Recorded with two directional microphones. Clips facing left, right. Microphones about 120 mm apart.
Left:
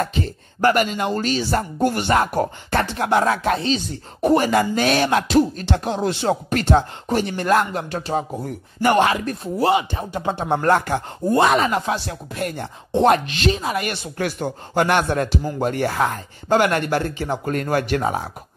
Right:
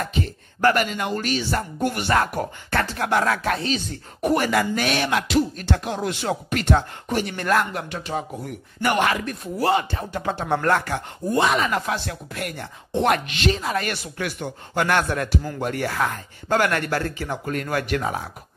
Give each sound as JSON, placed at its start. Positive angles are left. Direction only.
{"t": 0.6, "sound": "speech", "side_deg": 20}
{"t": 9.7, "sound": "speech", "side_deg": 15}
{"t": 11.3, "sound": "speech", "side_deg": 40}
{"t": 11.7, "sound": "speech", "side_deg": 20}
{"t": 13.5, "sound": "speech", "side_deg": 20}
{"t": 14.1, "sound": "speech", "side_deg": 35}